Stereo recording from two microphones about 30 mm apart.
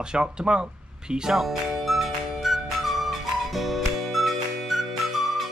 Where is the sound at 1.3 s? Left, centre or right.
Centre.